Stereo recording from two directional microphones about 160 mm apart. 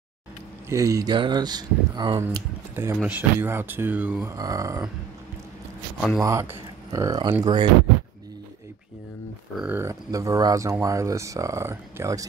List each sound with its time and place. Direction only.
0.7 s speech: 20° right (ahead or behind)
5.9 s speech: 5° right (ahead or behind)
6.2 s speech: 20° right (ahead or behind)
9.6 s speech: 10° right (ahead or behind)
9.8 s speech: 20° right (ahead or behind)